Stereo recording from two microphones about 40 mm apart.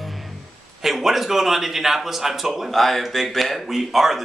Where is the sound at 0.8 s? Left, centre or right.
Centre.